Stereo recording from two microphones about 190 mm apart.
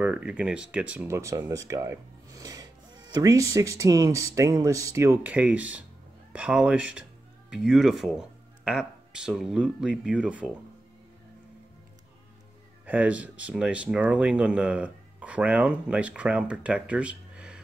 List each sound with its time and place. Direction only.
0.0 s speech: 5° right (ahead or behind)
12.8 s speech: 5° right (ahead or behind)